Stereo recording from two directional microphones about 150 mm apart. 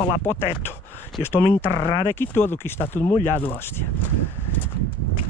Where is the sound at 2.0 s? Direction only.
15° left (ahead or behind).